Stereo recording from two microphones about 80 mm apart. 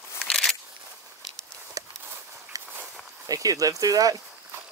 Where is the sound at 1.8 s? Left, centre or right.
Right.